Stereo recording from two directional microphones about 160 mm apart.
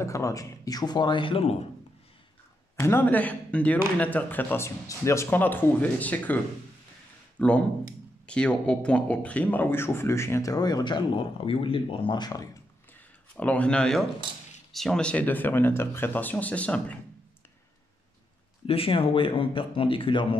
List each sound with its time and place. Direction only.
0.0 s speech: 20° left (ahead or behind); by 1.6 s 35° left (ahead or behind)
2.8 s a man's voice: 15° left (ahead or behind)
13.4 s a man's voice: 10° left (ahead or behind)
18.7 s speech: 35° left (ahead or behind)